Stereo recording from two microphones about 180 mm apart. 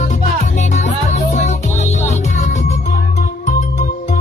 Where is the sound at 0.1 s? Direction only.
40° left (ahead or behind).